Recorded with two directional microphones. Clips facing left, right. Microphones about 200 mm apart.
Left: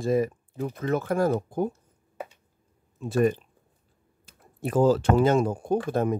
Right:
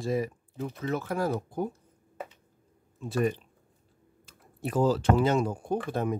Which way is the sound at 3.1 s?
50° left (ahead or behind).